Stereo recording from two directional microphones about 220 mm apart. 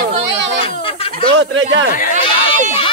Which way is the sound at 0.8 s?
25° left (ahead or behind).